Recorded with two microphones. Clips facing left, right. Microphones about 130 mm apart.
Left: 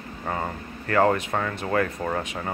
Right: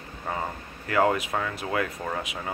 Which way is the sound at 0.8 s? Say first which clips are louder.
Left 2 dB; 10° right (ahead or behind).